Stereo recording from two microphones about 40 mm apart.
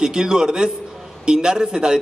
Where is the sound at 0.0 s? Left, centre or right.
Centre.